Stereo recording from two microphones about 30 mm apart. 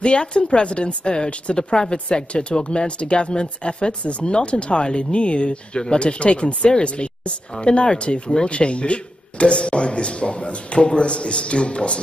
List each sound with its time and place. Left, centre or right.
0.0 s speech: left
1.1 s speech: left
4.0 s speech: left